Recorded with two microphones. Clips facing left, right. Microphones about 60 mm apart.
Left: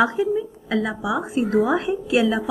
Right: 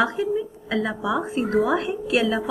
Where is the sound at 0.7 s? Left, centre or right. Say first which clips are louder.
Left 1 dB; centre.